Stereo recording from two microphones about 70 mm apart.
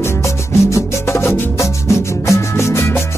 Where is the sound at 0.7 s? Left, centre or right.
Left.